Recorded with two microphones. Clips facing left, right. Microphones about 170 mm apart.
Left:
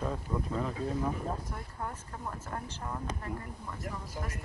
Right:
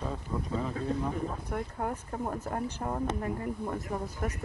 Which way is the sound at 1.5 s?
55° right (ahead or behind).